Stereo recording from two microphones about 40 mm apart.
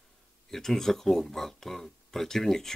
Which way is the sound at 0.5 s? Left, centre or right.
Centre.